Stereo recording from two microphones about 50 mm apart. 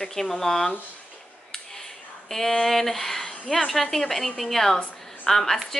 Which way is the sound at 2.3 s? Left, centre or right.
Centre.